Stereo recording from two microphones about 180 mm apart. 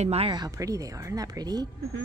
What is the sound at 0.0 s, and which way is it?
Speech, 35° right (ahead or behind).